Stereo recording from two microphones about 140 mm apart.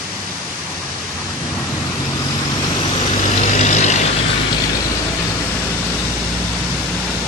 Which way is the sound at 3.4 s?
55° left (ahead or behind).